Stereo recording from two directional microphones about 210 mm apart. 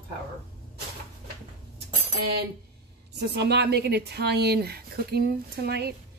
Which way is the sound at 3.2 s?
50° right (ahead or behind).